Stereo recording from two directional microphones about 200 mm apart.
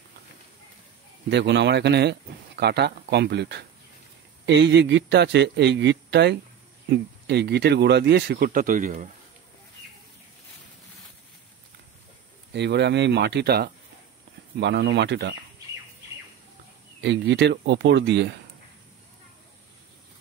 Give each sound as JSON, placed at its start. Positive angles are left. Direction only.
{"t": 1.3, "sound": "speech", "side_deg": -60}
{"t": 12.5, "sound": "speech", "side_deg": -60}
{"t": 17.0, "sound": "speech", "side_deg": -60}